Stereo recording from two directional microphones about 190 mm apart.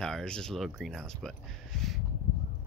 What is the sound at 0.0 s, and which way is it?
Speech, 5° left (ahead or behind).